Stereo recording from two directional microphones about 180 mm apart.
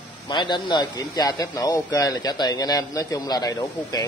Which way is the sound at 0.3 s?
25° left (ahead or behind).